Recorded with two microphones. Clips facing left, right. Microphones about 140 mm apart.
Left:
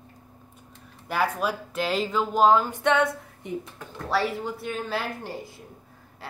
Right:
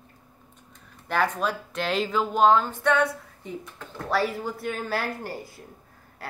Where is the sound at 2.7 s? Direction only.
20° left (ahead or behind).